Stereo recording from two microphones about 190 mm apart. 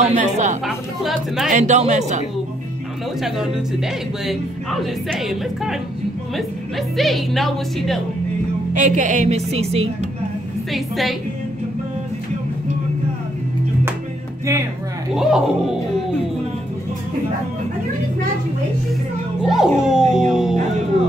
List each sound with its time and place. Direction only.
0.0 s speech: 40° right (ahead or behind)
0.7 s speech: centre (ahead or behind)
1.5 s speech: 40° right (ahead or behind)
4.3 s speech: centre (ahead or behind)
7.0 s speech: centre (ahead or behind)
8.7 s speech: 40° right (ahead or behind)
10.7 s speech: centre (ahead or behind)
15.1 s speech: 5° right (ahead or behind)
19.4 s speech: 5° right (ahead or behind)